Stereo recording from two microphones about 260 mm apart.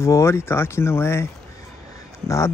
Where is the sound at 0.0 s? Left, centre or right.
Centre.